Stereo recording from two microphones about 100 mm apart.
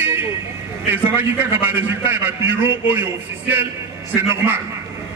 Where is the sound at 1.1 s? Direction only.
20° right (ahead or behind).